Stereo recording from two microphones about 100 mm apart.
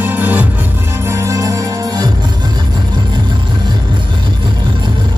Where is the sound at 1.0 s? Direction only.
30° right (ahead or behind).